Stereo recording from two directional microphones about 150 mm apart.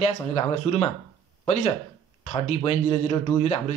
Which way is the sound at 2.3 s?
45° left (ahead or behind).